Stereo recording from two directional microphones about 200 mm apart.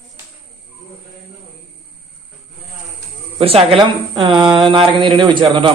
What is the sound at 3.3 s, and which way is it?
A man's voice, 25° right (ahead or behind).